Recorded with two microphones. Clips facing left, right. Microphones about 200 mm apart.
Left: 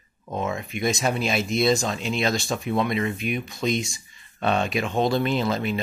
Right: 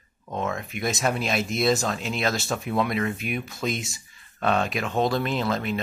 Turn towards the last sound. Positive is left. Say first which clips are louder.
# left 2 dB
turn(degrees=0)  # may be behind; listen again after turning